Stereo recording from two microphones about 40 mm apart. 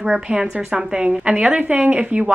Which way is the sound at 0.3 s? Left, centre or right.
Right.